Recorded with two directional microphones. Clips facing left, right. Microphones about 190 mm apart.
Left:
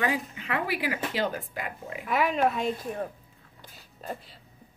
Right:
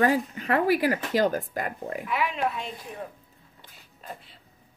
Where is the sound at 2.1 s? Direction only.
45° left (ahead or behind).